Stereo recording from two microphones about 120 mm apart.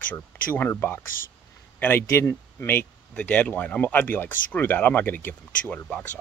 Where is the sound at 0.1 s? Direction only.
15° left (ahead or behind).